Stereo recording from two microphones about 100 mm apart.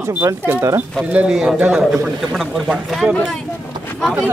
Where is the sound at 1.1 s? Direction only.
10° right (ahead or behind).